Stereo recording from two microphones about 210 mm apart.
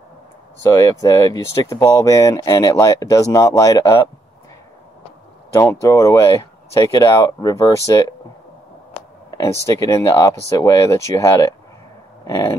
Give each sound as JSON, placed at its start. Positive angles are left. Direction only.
{"t": 0.7, "sound": "speech", "side_deg": 15}
{"t": 5.5, "sound": "speech", "side_deg": 15}
{"t": 9.7, "sound": "speech", "side_deg": 15}